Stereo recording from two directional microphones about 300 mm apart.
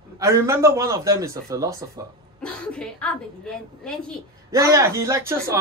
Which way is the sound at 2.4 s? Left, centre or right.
Centre.